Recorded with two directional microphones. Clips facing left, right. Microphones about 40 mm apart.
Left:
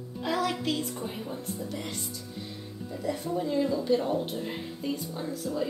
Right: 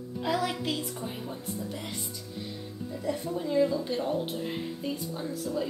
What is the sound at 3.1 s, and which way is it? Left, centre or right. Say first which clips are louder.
A woman's voice: left 1 dB; centre.